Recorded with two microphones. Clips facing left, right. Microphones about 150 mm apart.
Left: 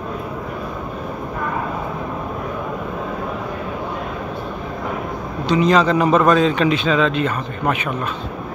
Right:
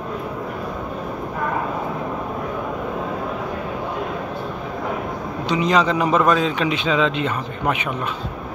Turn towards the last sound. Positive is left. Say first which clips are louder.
# left 1 dB
turn(degrees=-20)  # may be behind; listen again after turning